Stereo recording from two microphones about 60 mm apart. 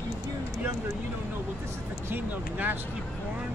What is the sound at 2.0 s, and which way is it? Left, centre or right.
Speech, right.